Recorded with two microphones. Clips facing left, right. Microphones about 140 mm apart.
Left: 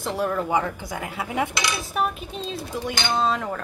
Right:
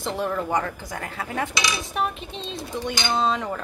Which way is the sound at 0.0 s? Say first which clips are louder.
Left 1 dB; centre (ahead or behind).